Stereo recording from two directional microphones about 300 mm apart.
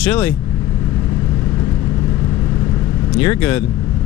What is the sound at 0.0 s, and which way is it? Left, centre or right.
Speech, centre.